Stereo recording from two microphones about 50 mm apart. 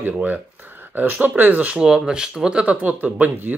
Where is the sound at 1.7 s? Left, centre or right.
Centre.